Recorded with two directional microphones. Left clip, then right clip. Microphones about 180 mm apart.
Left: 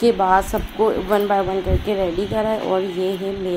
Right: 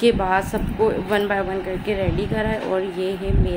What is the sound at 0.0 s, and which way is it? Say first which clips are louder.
Speech: left 3 dB; 5° right (ahead or behind).